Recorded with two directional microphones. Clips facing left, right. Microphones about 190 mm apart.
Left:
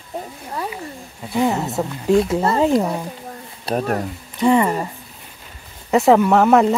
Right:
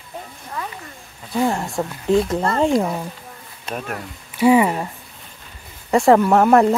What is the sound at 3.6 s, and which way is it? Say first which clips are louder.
Speech: left 8 dB; 40° left (ahead or behind).